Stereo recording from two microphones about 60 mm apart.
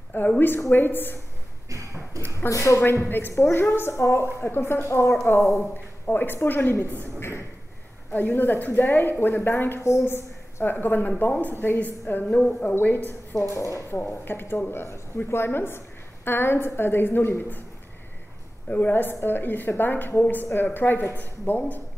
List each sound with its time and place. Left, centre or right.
0.4 s a woman's voice: left
1.7 s a sound: right
2.5 s speech: left
3.1 s a woman's voice: left
6.0 s a woman's voice: left
7.2 s a sound: left
8.1 s a woman's voice: left
12.4 s a woman's voice: centre
12.8 s a woman's voice: left
13.6 s speech: left
13.8 s a woman's voice: left
18.7 s a woman's voice: left